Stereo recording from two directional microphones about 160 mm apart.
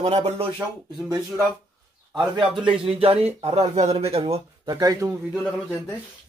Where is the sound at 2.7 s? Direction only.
35° right (ahead or behind).